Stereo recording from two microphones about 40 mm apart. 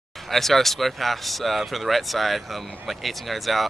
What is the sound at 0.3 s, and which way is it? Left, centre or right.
Speech, centre.